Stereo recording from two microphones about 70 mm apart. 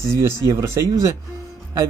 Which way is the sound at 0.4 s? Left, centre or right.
Right.